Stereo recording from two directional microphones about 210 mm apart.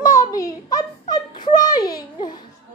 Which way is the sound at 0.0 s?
15° left (ahead or behind).